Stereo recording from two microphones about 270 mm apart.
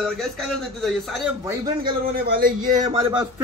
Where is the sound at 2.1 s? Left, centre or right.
Right.